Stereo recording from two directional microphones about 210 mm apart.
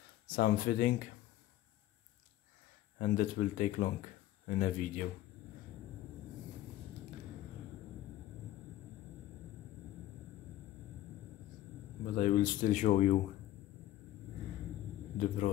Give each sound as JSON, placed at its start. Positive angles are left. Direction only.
{"t": 0.4, "sound": "speech", "side_deg": 40}
{"t": 3.0, "sound": "speech", "side_deg": 40}
{"t": 12.0, "sound": "speech", "side_deg": 40}
{"t": 15.1, "sound": "speech", "side_deg": 40}